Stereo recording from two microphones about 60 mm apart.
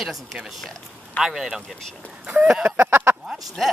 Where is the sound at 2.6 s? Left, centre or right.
Right.